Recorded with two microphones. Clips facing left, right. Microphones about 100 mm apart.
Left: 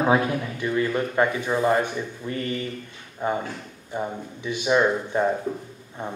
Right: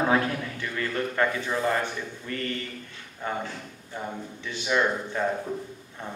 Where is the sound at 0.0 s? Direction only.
20° left (ahead or behind).